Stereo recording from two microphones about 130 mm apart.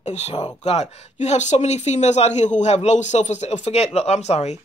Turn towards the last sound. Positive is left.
turn(degrees=60)  # may be behind; listen again after turning